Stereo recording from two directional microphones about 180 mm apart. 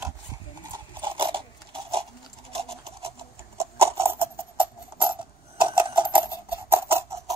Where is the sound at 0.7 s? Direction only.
30° right (ahead or behind).